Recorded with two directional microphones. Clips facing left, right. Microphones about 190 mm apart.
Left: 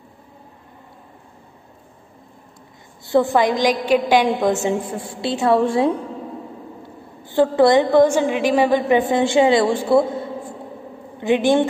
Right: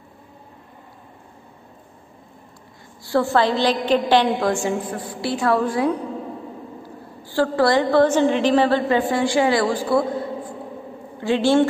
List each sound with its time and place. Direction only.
3.1 s a woman's voice: 20° left (ahead or behind)
4.5 s a woman's voice: 20° left (ahead or behind)
7.2 s a woman's voice: 20° left (ahead or behind)